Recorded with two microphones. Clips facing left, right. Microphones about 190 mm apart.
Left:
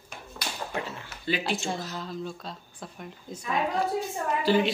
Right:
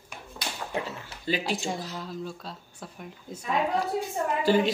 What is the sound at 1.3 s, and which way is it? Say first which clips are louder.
Speech: even; 40° right (ahead or behind).